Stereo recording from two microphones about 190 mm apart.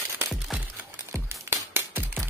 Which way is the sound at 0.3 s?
5° right (ahead or behind).